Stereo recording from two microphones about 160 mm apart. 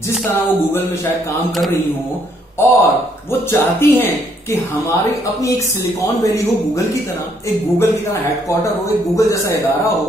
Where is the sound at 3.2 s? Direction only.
15° left (ahead or behind).